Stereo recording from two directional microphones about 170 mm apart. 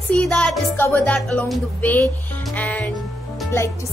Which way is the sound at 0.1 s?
5° left (ahead or behind).